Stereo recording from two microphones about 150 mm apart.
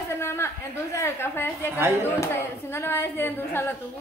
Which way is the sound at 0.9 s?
15° left (ahead or behind).